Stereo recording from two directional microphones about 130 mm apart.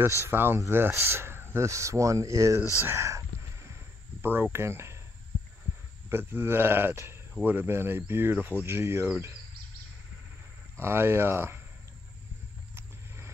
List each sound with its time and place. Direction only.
0.2 s speech: 15° right (ahead or behind)
2.6 s speech: 25° left (ahead or behind)
2.9 s a sound: 20° right (ahead or behind)
4.2 s speech: 15° right (ahead or behind)
6.0 s speech: 15° right (ahead or behind)
10.8 s speech: 20° right (ahead or behind)
12.7 s vehicle: 20° right (ahead or behind)